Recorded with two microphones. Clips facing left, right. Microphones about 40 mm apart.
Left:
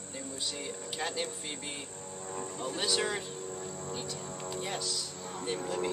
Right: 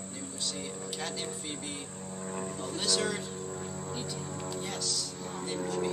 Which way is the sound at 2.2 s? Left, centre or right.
Centre.